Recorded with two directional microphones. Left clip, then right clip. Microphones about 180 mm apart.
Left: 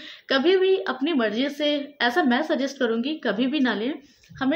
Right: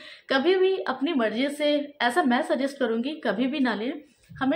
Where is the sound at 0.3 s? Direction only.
5° left (ahead or behind).